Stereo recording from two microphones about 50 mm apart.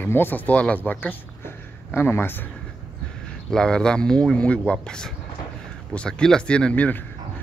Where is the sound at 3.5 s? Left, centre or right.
Centre; by 7.0 s left.